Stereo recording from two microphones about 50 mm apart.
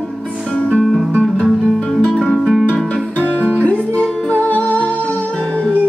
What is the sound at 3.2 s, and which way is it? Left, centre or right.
Guitar, right.